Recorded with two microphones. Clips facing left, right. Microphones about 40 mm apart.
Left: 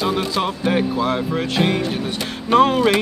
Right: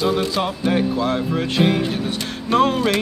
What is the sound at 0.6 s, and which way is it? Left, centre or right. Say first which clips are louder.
Music: even; centre.